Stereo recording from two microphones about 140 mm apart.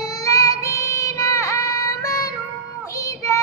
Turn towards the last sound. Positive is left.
turn(degrees=20)  # may be behind; listen again after turning